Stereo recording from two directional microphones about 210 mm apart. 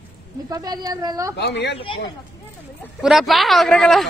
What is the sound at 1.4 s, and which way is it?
Speech, 55° left (ahead or behind).